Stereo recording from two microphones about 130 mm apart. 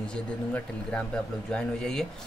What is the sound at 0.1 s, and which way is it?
Speech, 10° left (ahead or behind).